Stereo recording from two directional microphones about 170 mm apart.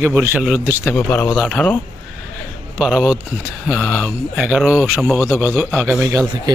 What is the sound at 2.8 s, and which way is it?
A man's voice, 5° right (ahead or behind).